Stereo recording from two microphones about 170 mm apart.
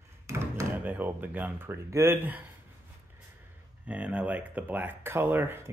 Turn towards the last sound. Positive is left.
turn(degrees=-10)  # may be behind; listen again after turning